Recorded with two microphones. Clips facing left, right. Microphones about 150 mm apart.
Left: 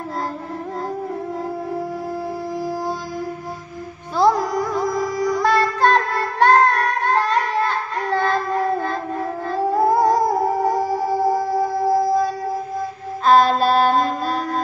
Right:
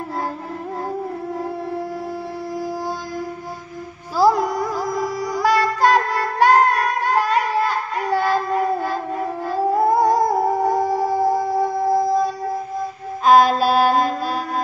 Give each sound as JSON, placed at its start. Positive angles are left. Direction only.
{"t": 4.2, "sound": "music", "side_deg": 0}
{"t": 13.3, "sound": "music", "side_deg": -10}